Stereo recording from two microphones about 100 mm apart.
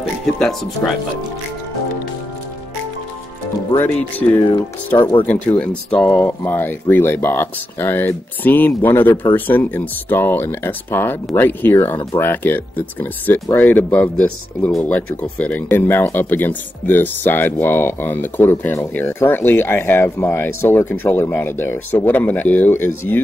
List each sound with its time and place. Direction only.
0.4 s speech: 5° left (ahead or behind)
3.7 s speech: 20° left (ahead or behind)